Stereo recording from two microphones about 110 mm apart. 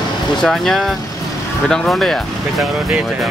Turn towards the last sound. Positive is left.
turn(degrees=0)  # may be behind; listen again after turning